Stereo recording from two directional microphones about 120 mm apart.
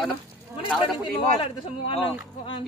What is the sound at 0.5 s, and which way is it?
Speech, 15° right (ahead or behind).